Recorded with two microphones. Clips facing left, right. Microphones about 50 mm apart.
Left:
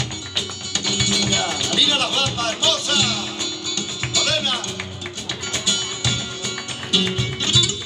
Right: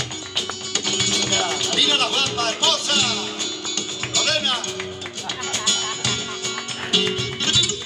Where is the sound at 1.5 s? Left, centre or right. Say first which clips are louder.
Even; right.